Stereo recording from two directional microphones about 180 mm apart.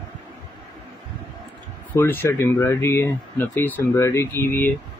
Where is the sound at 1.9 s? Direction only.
10° left (ahead or behind).